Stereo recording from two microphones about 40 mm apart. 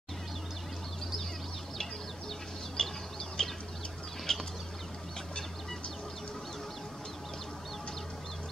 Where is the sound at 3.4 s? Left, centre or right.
Centre.